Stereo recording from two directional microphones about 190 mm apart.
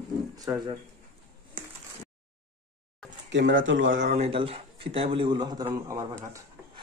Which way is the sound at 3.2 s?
70° right (ahead or behind).